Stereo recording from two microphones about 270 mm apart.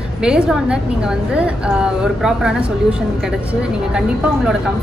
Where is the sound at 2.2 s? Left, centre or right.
Centre.